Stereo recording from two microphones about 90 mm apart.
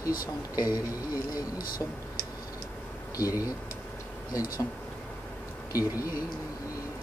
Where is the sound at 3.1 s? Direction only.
40° left (ahead or behind).